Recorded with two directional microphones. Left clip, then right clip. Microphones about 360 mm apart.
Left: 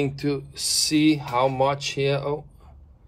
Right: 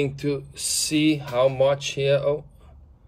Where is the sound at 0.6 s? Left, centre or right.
Centre.